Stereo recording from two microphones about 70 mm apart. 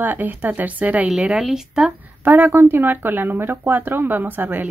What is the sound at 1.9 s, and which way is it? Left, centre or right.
Speech, right.